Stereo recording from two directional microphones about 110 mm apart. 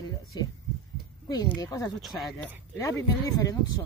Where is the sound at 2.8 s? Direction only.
30° left (ahead or behind).